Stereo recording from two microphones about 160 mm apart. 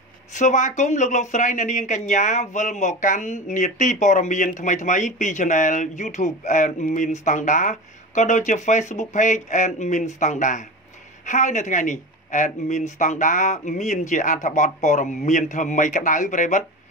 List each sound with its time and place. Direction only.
0.3 s speech: 50° left (ahead or behind)